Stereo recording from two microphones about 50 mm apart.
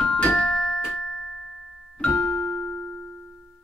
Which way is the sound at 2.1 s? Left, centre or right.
Left.